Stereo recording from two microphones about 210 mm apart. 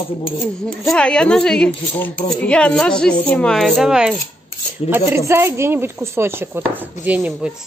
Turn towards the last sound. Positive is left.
turn(degrees=-5)  # may be behind; listen again after turning